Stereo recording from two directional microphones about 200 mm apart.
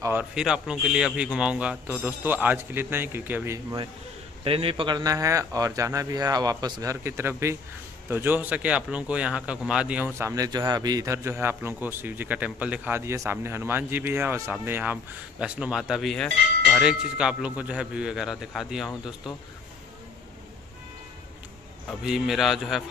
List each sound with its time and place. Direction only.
0.0 s a man's voice: 10° right (ahead or behind)
4.5 s a man's voice: 30° right (ahead or behind); by 18.9 s centre (ahead or behind)
22.0 s speech: centre (ahead or behind)